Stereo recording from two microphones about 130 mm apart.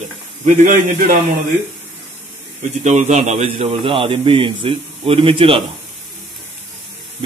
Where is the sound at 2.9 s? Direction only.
60° right (ahead or behind); by 5.6 s 45° right (ahead or behind).